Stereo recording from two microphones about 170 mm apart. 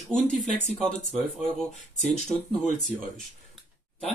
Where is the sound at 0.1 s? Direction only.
5° left (ahead or behind).